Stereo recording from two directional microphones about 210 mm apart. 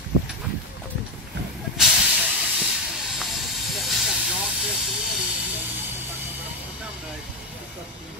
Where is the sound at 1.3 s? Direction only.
55° right (ahead or behind).